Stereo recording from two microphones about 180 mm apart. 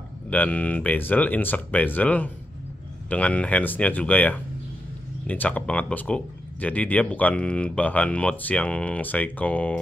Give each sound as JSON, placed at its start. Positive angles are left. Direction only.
{"t": 0.3, "sound": "speech", "side_deg": 10}